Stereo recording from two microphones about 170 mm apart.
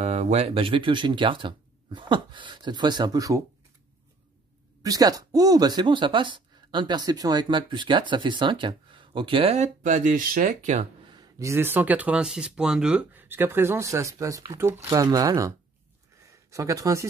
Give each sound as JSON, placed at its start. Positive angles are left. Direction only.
{"t": 0.0, "sound": "speech", "side_deg": -40}
{"t": 4.8, "sound": "speech", "side_deg": -20}
{"t": 11.1, "sound": "speech", "side_deg": -15}
{"t": 16.3, "sound": "a sound", "side_deg": -20}